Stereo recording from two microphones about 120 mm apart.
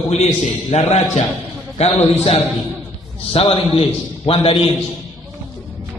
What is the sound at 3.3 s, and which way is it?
A man's voice, 50° left (ahead or behind).